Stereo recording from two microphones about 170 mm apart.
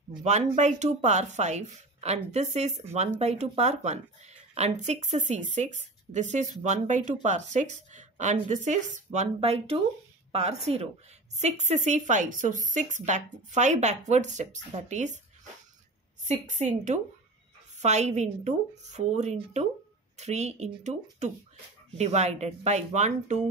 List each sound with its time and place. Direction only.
0.2 s a woman's voice: 40° right (ahead or behind)
16.3 s a woman's voice: 45° right (ahead or behind)